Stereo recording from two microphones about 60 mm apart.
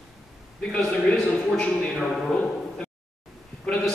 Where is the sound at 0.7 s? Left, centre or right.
Centre.